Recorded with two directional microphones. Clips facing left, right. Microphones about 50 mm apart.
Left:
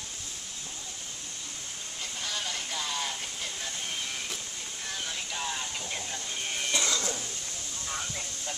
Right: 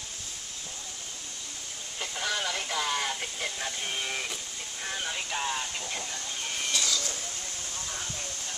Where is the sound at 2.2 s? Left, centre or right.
Right.